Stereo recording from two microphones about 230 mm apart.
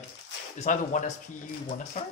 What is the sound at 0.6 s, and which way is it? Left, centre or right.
Speech, left.